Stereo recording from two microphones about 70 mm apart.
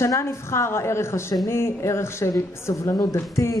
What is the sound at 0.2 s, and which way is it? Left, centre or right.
Speech, left.